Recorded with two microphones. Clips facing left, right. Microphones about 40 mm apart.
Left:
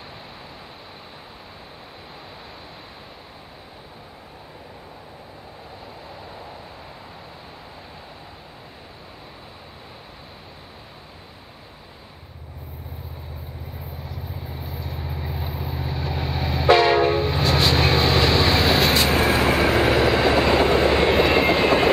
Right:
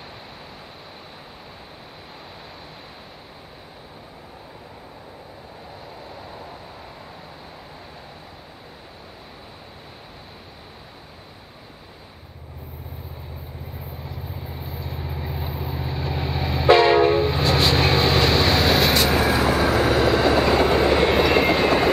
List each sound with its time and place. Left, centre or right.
13.7 s vehicle: centre
19.0 s vehicle: left
20.0 s train: centre
20.8 s vehicle: centre